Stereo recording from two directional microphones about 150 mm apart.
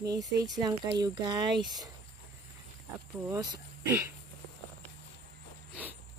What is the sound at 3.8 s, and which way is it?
Speech, 15° right (ahead or behind).